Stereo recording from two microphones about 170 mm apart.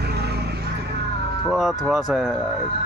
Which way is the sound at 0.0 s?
70° right (ahead or behind).